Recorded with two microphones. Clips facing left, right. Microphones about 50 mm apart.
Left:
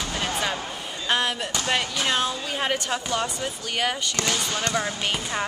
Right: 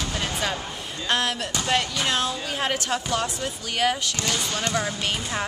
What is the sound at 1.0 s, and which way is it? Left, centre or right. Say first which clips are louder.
Speech: even; centre.